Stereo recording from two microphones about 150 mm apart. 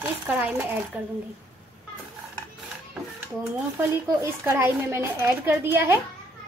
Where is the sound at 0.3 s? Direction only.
10° right (ahead or behind).